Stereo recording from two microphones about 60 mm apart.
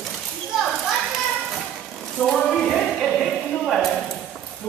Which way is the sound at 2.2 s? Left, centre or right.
Left.